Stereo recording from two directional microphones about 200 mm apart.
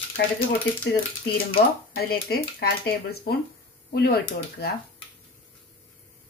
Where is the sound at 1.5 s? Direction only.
50° left (ahead or behind).